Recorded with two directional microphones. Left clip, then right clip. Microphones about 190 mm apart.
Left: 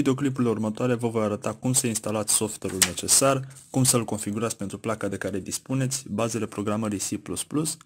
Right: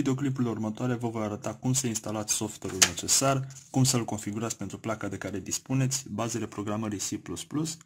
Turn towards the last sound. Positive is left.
turn(degrees=20)  # may be behind; listen again after turning